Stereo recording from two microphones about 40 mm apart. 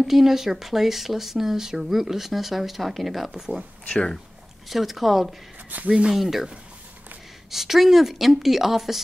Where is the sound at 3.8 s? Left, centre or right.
Left.